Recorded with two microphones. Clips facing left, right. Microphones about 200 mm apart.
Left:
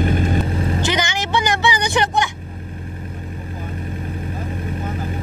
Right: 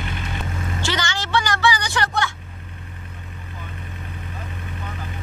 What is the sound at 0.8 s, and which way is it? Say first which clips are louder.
Music: left 5 dB; 20° left (ahead or behind).